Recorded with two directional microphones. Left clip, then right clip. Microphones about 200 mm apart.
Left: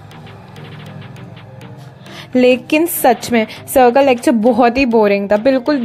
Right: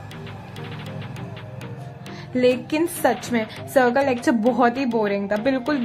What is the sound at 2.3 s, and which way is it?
A woman's voice, 35° left (ahead or behind).